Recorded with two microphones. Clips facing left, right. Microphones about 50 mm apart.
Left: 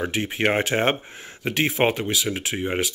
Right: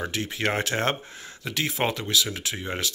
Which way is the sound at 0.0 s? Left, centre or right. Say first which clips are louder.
Left 4 dB; left.